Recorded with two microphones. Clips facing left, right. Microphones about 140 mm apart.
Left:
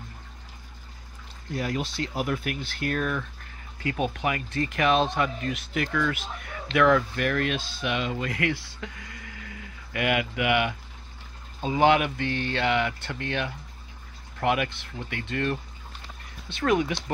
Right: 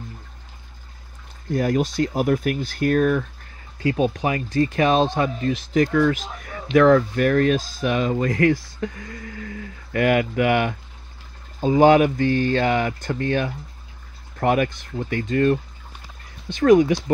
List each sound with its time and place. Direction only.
1.5 s speech: 45° right (ahead or behind)
3.8 s speech: 30° right (ahead or behind)